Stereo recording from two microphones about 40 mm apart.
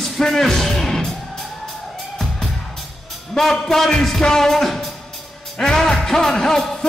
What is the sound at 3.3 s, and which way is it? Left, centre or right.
Music, centre.